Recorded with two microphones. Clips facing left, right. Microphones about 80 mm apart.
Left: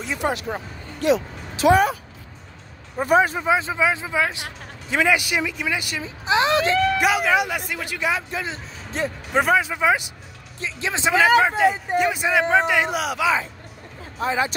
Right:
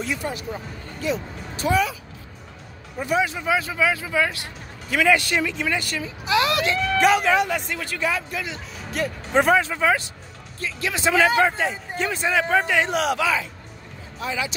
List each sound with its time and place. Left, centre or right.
0.2 s speech: left
3.0 s speech: left
3.4 s speech: left
7.0 s speech: centre; by 9.1 s left
9.3 s speech: centre; by 11.1 s left
11.1 s speech: centre
14.2 s speech: left